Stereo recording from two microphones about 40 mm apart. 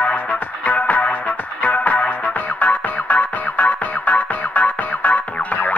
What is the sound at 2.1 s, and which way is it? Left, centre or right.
Music, left.